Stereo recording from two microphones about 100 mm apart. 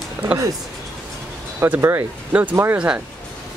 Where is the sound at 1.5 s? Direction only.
25° right (ahead or behind).